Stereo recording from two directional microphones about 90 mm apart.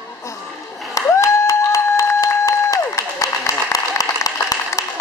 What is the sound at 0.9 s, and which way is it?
Applause, 35° left (ahead or behind).